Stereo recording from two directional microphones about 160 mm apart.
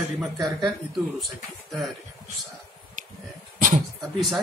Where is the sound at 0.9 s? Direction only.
Centre (ahead or behind).